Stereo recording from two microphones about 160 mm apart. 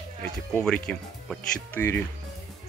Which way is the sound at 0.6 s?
5° left (ahead or behind).